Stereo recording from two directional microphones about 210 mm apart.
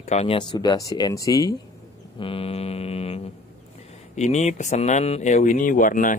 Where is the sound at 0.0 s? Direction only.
30° left (ahead or behind).